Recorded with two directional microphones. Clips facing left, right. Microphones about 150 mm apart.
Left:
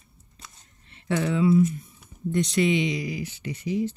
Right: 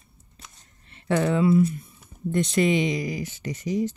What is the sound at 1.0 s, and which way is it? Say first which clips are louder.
Speech: right 1 dB; 50° right (ahead or behind).